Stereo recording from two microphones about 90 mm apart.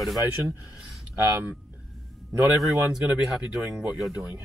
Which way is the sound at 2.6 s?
5° right (ahead or behind).